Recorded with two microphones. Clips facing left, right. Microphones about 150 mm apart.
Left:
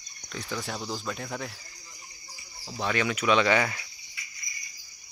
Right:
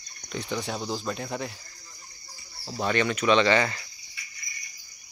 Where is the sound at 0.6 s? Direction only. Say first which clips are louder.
Right 3 dB; 5° right (ahead or behind).